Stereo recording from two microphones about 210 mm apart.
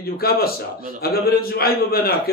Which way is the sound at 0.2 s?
45° left (ahead or behind).